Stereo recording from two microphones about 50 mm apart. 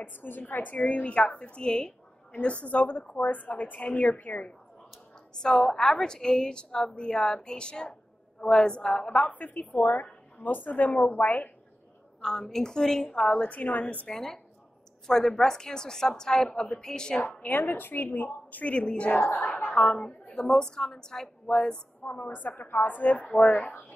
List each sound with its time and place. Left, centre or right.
0.0 s a woman's voice: left; by 2.0 s centre
2.3 s a woman's voice: left
5.3 s a woman's voice: centre
9.3 s a woman's voice: left
12.2 s a woman's voice: centre
13.5 s a woman's voice: left
14.0 s a woman's voice: centre
17.4 s a woman's voice: left
19.1 s a woman's voice: left
19.7 s a woman's voice: centre
22.0 s a woman's voice: left
23.3 s a woman's voice: centre